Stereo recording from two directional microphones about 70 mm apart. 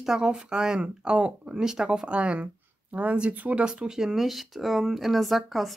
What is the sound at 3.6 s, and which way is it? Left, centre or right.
Speech, centre.